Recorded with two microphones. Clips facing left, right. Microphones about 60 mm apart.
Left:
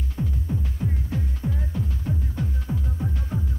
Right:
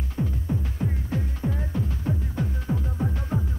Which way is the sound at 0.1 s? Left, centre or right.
Right.